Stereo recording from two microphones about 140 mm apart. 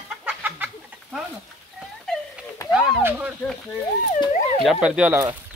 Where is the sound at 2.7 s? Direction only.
5° right (ahead or behind).